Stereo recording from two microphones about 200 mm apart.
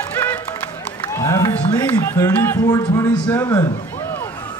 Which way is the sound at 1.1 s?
15° left (ahead or behind).